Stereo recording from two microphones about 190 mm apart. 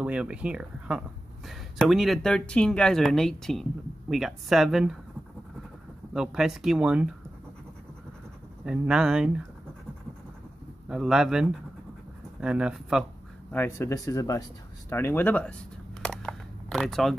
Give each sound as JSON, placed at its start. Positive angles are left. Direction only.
{"t": 0.0, "sound": "speech", "side_deg": -5}
{"t": 6.1, "sound": "speech", "side_deg": -5}
{"t": 8.6, "sound": "speech", "side_deg": -5}
{"t": 10.9, "sound": "speech", "side_deg": -5}
{"t": 13.5, "sound": "speech", "side_deg": 10}
{"t": 16.0, "sound": "a sound", "side_deg": 5}